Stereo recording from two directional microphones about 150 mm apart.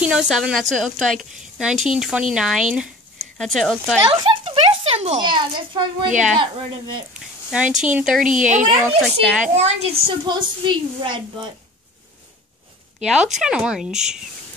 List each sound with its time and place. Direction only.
0.0 s a woman's voice: 5° right (ahead or behind)
4.1 s speech: 40° right (ahead or behind)
5.2 s a woman's voice: 30° right (ahead or behind)
7.2 s a woman's voice: 5° right (ahead or behind)
9.6 s a woman's voice: 45° right (ahead or behind)
13.0 s a woman's voice: 5° right (ahead or behind)